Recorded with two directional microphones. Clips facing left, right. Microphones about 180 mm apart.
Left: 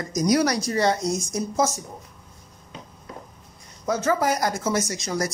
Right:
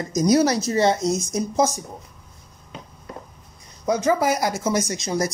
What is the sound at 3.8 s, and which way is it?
Speech, 15° right (ahead or behind).